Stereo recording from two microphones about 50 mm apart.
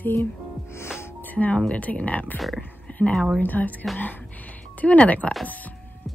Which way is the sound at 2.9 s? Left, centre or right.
Left.